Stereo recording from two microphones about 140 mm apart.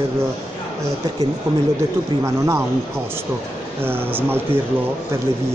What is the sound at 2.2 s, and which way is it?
Speech, 20° right (ahead or behind).